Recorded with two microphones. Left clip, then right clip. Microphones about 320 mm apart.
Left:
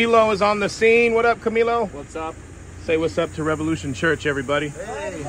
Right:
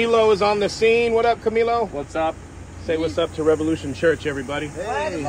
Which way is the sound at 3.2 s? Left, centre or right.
Left.